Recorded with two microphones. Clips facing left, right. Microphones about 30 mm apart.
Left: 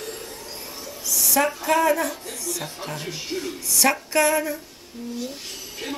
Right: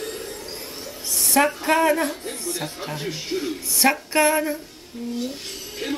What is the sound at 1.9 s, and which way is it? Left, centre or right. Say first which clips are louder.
Speech: right 1 dB; right.